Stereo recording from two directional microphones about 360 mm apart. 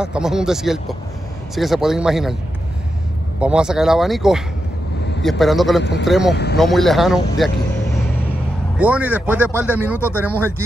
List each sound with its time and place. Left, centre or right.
0.0 s speech: centre
3.3 s speech: centre
5.8 s speech: left
6.0 s speech: centre
6.3 s speech: left
6.6 s speech: centre
8.7 s speech: centre